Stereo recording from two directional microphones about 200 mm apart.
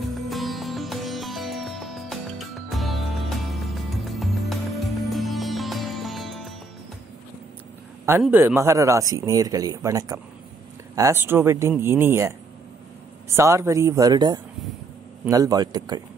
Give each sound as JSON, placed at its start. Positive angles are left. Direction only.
{"t": 0.1, "sound": "music", "side_deg": 0}
{"t": 8.2, "sound": "speech", "side_deg": -10}